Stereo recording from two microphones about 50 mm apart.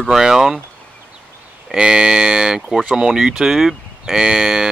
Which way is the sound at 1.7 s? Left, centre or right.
Centre.